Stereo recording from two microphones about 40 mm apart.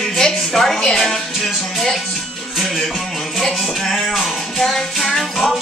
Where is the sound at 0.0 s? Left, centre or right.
Centre.